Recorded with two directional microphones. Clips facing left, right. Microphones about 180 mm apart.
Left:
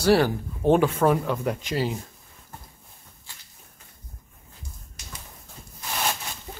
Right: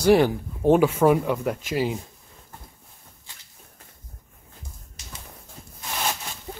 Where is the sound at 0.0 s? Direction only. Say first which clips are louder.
Right 2 dB; 15° right (ahead or behind).